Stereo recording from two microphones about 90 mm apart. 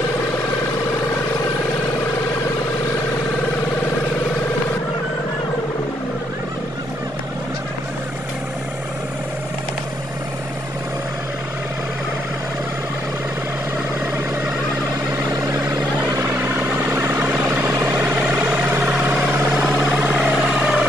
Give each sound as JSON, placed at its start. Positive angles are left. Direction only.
{"t": 16.9, "sound": "vehicle", "side_deg": -20}